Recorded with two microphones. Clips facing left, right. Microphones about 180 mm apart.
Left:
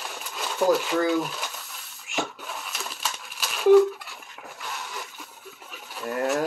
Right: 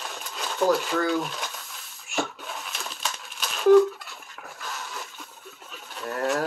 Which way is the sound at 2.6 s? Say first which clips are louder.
Left 1 dB; 5° left (ahead or behind).